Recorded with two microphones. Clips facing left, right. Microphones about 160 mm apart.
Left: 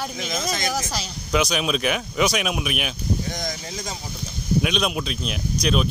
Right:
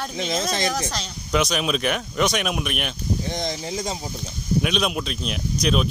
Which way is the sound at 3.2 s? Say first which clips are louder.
Right 3 dB; 25° right (ahead or behind).